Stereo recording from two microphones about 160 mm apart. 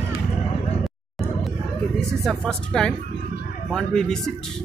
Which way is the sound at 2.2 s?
5° left (ahead or behind).